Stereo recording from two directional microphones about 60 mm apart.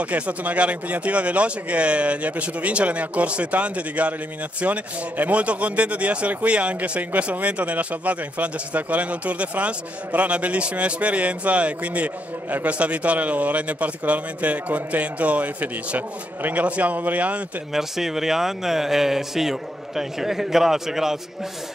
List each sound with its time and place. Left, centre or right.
0.0 s speech: right
17.7 s speech: centre